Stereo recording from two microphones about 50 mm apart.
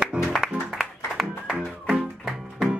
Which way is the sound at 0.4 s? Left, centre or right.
Centre.